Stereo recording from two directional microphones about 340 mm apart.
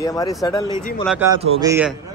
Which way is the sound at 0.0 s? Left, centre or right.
Centre.